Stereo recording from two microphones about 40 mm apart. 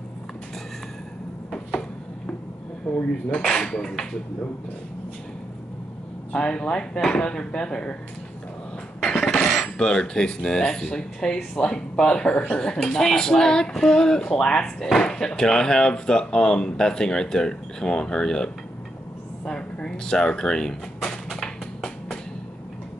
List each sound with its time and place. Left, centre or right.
1.5 s cupboard open or close: centre
2.9 s speech: left
6.3 s speech: left
9.0 s a sound: centre
9.6 s speech: left
21.3 s a sound: centre